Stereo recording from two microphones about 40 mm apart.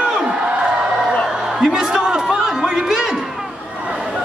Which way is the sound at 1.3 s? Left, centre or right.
Centre.